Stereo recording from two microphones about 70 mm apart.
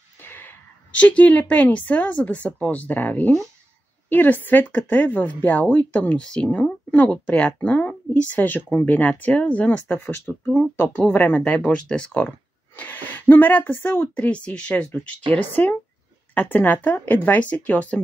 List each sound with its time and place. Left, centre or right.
0.2 s a woman's voice: left